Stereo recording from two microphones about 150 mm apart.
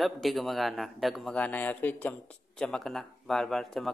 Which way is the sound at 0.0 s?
Centre (ahead or behind).